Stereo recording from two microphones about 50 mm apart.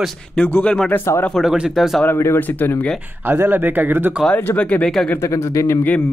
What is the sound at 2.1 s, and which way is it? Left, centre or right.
Speech, left.